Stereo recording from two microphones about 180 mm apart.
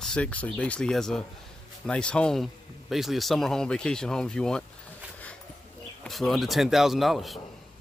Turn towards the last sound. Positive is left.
turn(degrees=0)  # may be behind; listen again after turning